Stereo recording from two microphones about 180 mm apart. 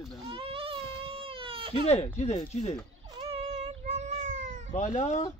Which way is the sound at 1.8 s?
35° left (ahead or behind).